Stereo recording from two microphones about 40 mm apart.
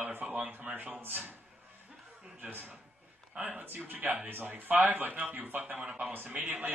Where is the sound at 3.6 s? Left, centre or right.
Right.